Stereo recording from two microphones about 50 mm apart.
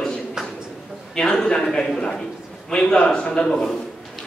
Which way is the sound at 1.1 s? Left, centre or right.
Centre.